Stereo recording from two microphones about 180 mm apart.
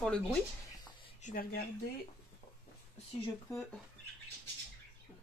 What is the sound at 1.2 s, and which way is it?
Speech, 50° left (ahead or behind).